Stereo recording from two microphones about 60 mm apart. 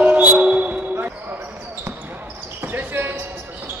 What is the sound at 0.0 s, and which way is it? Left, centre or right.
Basketball bounce, right.